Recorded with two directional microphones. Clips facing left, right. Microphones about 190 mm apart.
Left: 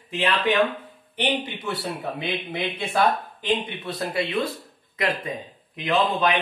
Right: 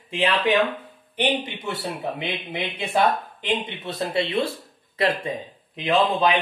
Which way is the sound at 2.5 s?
20° right (ahead or behind).